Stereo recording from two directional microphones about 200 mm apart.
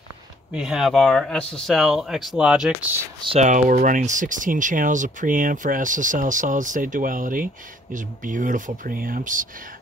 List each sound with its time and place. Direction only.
0.5 s speech: centre (ahead or behind)
3.2 s speech: 30° right (ahead or behind)